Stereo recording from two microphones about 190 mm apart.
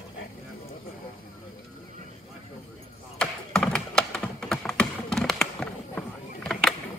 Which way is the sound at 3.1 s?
5° left (ahead or behind).